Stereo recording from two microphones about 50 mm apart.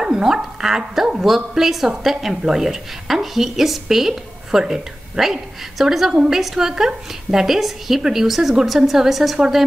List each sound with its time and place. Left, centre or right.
0.0 s a woman's voice: centre